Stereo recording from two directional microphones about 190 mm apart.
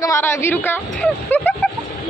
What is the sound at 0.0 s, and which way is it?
Speech, 15° left (ahead or behind).